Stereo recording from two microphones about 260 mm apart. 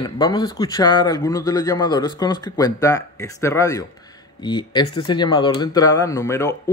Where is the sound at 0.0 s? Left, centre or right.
Centre.